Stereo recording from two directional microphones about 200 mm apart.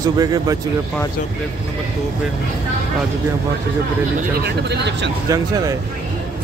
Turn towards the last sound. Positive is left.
turn(degrees=-20)  # may be behind; listen again after turning